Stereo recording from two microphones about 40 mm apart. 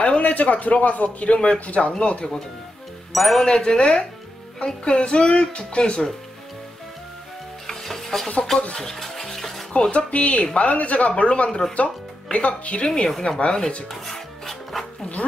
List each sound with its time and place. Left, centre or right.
0.0 s a man's voice: left
3.1 s music: centre
3.4 s speech: centre
7.6 s stir: centre
9.7 s speech: left
13.8 s music: centre